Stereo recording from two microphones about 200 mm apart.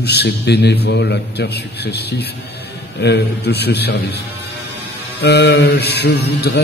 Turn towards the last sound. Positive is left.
turn(degrees=55)  # may be behind; listen again after turning